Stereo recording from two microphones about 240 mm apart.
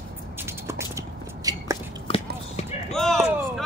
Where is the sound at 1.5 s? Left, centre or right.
Centre.